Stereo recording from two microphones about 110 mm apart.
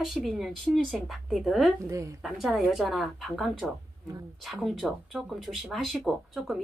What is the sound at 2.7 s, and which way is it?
Speech, centre (ahead or behind).